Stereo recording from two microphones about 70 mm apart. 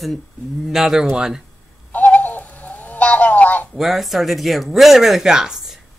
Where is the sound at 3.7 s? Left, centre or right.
Centre.